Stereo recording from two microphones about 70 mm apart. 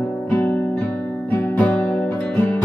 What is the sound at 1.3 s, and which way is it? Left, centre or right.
Music, left.